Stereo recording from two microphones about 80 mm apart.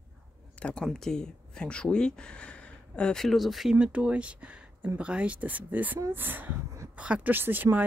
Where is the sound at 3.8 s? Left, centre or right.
Centre.